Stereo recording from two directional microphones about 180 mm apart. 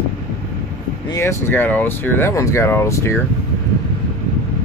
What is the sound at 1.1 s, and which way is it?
Speech, 15° left (ahead or behind).